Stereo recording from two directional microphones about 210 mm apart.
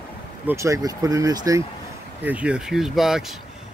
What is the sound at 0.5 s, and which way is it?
Speech, 15° right (ahead or behind).